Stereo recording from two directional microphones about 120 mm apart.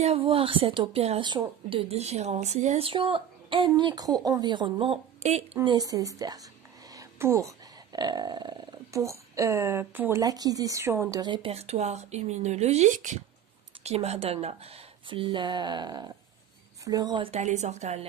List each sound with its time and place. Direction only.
0.0 s speech: 50° right (ahead or behind)
1.2 s speech: 40° right (ahead or behind); by 2.9 s 65° right (ahead or behind)
2.9 s speech: 50° right (ahead or behind)
5.6 s a woman's voice: 35° right (ahead or behind); by 10.2 s 20° right (ahead or behind)
10.2 s speech: 30° right (ahead or behind)
11.1 s speech: 40° right (ahead or behind)
11.5 s speech: 60° right (ahead or behind); by 13.2 s 90° right
13.8 s speech: 60° right (ahead or behind)
15.2 s speech: 40° right (ahead or behind)
17.2 s speech: 70° right (ahead or behind)